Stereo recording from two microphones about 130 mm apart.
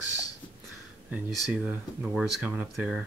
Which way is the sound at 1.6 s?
10° right (ahead or behind).